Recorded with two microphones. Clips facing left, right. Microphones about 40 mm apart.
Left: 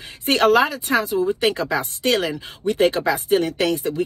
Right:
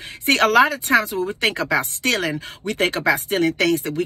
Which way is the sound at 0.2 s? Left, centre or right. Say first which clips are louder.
Right 1 dB; right.